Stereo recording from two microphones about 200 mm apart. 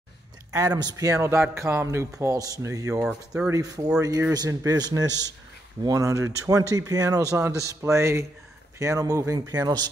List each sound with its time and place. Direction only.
0.5 s speech: 20° right (ahead or behind)
3.0 s speech: 5° right (ahead or behind)